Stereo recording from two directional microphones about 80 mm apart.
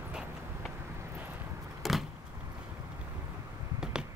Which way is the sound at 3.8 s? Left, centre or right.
Centre.